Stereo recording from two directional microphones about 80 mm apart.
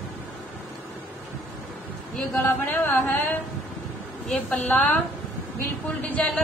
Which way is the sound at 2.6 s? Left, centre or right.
Left.